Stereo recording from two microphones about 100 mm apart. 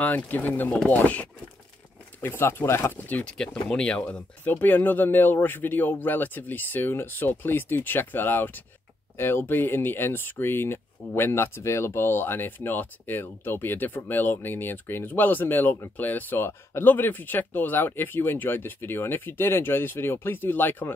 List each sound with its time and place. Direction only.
0.0 s speech: 15° left (ahead or behind)
4.0 s speech: 20° left (ahead or behind)